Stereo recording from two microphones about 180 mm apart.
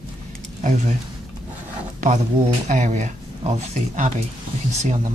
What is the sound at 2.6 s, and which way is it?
Speech, 45° right (ahead or behind).